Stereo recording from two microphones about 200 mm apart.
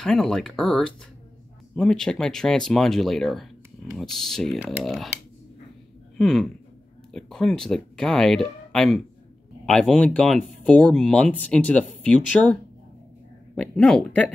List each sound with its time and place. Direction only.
0.0 s speech: centre (ahead or behind)
6.1 s speech: centre (ahead or behind)
13.6 s speech: 5° left (ahead or behind)